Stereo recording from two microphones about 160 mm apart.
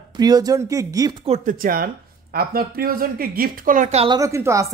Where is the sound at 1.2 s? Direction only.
50° right (ahead or behind).